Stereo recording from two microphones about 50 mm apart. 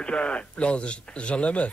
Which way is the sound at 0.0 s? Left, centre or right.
Left.